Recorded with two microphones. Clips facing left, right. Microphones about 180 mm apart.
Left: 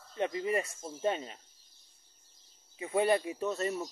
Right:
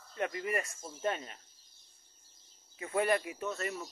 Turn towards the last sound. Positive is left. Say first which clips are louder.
# left 5 dB
turn(degrees=25)  # may be behind; listen again after turning